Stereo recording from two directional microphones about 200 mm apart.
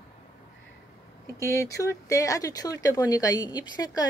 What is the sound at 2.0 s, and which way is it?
Speech, 15° left (ahead or behind).